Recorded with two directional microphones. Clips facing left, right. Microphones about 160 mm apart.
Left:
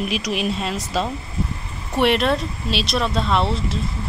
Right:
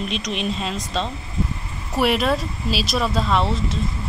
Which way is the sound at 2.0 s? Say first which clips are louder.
Left 1 dB; centre (ahead or behind).